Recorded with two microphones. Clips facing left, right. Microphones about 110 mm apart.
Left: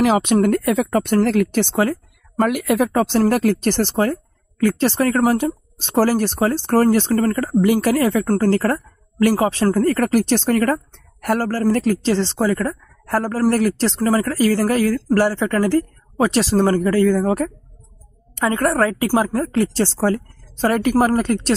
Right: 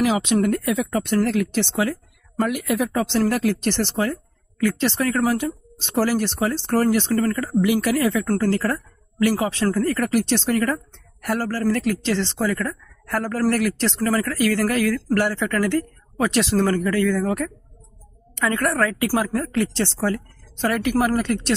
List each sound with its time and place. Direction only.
0.0 s speech: 50° left (ahead or behind)
18.3 s speech: 30° left (ahead or behind)